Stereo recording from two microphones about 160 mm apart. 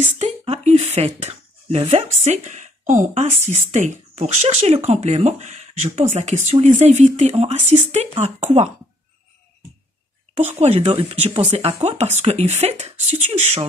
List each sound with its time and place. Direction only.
0.0 s speech: 40° right (ahead or behind)
10.6 s speech: 45° right (ahead or behind)